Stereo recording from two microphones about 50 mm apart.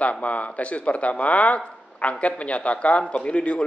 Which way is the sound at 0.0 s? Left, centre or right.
Left.